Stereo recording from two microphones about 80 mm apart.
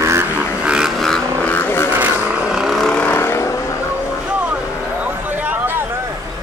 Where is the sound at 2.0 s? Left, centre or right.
Centre.